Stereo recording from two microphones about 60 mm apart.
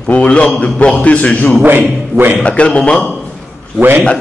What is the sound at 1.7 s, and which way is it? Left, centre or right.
Speech, right.